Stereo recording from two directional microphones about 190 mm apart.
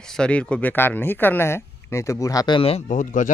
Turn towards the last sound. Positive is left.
turn(degrees=45)  # may be behind; listen again after turning